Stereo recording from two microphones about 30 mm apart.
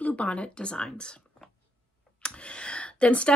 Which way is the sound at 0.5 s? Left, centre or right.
Left.